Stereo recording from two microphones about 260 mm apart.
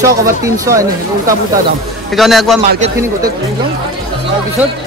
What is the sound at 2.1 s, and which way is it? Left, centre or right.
Speech, centre.